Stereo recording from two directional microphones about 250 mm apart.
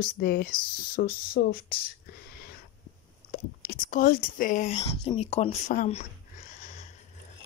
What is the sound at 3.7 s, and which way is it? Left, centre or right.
Speech, left.